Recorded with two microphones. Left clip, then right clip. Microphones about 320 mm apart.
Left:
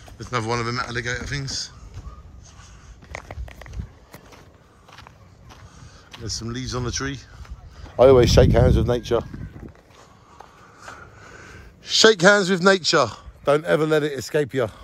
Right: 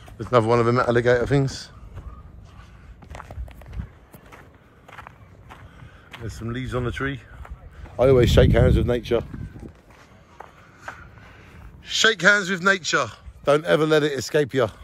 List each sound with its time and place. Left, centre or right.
0.2 s a man's voice: centre
4.8 s walk: centre
6.4 s a man's voice: centre
12.0 s a man's voice: centre
13.5 s a man's voice: centre